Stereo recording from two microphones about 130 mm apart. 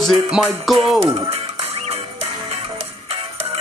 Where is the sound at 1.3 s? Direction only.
55° right (ahead or behind).